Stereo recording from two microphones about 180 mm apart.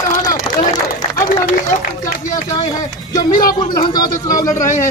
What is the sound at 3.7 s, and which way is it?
Speech, 25° left (ahead or behind).